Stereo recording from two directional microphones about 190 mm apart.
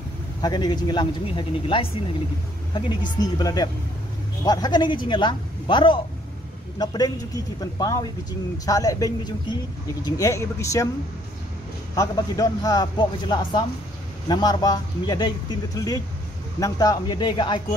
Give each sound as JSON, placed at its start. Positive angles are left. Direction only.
{"t": 0.4, "sound": "speech", "side_deg": 20}
{"t": 3.2, "sound": "a woman's voice", "side_deg": 20}
{"t": 11.9, "sound": "speech", "side_deg": 20}